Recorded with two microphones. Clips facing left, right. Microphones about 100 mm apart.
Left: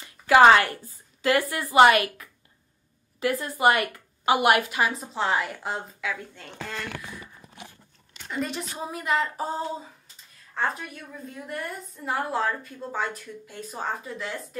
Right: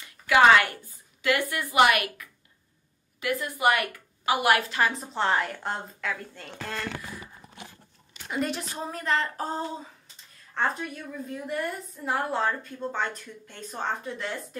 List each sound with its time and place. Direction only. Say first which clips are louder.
0.0 s a sound: left 4 dB; 30° left (ahead or behind)
1.5 s a woman's voice: left 5 dB; 30° left (ahead or behind); by 4.9 s 15° left (ahead or behind)
4.9 s a woman's voice: even; centre (ahead or behind)
8.3 s a woman's voice: right 1 dB; centre (ahead or behind)
8.9 s a woman's voice: left 2 dB; 10° left (ahead or behind)